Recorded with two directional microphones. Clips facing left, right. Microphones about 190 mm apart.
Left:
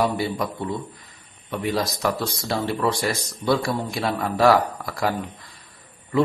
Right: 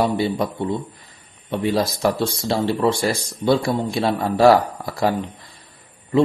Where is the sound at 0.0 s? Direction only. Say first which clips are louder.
Right 3 dB; 25° right (ahead or behind).